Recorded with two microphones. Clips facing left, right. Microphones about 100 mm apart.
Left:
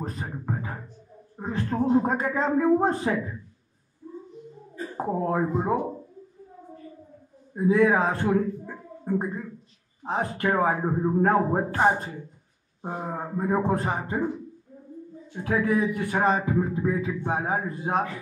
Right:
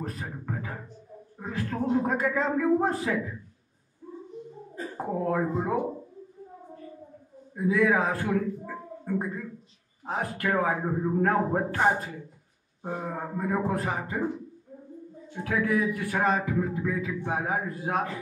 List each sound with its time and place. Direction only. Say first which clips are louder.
0.0 s a sound: left 2 dB; 30° left (ahead or behind)
1.3 s a man's voice: left 4 dB; 30° left (ahead or behind)
4.9 s speech: left 2 dB; 30° left (ahead or behind)
7.5 s speech: left 3 dB; 30° left (ahead or behind)
15.4 s speech: left 2 dB; 30° left (ahead or behind)